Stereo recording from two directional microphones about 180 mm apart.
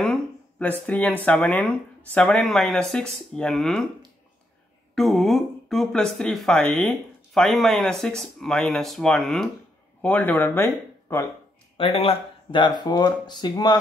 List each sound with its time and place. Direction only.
0.0 s speech: 5° left (ahead or behind)
4.9 s speech: centre (ahead or behind)
11.7 s speech: 30° left (ahead or behind)